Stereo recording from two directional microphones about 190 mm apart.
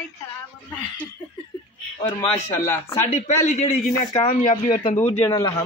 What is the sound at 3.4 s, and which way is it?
A man's voice, 40° left (ahead or behind).